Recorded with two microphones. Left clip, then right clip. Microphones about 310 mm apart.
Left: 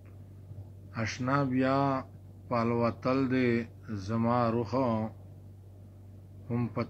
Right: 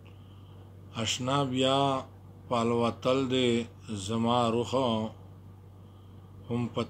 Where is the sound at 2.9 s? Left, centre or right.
Right.